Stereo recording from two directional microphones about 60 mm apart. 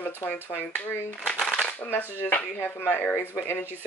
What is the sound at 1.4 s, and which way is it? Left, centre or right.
Shuffling cards, left.